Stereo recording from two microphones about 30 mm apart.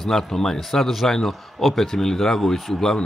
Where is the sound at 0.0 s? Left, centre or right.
Centre.